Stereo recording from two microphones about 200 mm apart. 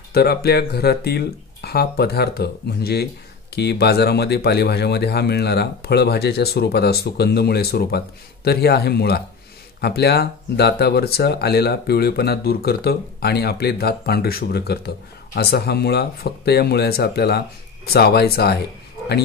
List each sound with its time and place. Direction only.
0.1 s speech: 50° left (ahead or behind)